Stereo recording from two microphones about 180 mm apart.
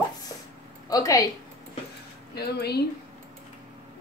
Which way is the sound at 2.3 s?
65° left (ahead or behind).